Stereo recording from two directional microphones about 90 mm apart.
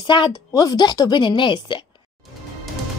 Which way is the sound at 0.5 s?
45° left (ahead or behind).